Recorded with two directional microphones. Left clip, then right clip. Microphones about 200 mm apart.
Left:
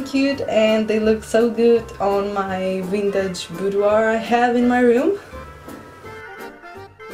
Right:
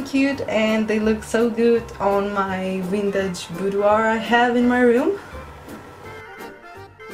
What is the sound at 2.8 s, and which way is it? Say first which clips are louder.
A woman's voice: right 1 dB; centre (ahead or behind).